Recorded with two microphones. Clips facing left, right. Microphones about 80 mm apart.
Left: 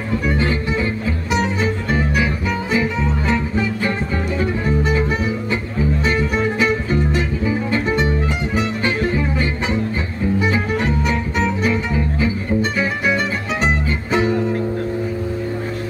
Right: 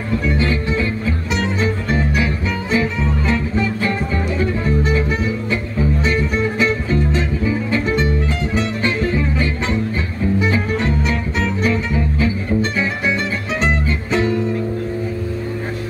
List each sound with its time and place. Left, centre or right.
0.3 s music: left
6.0 s music: left
14.1 s music: centre